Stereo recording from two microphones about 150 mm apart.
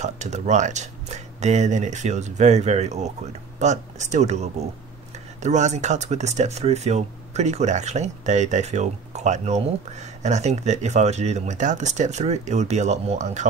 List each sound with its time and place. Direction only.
0.0 s speech: 50° right (ahead or behind)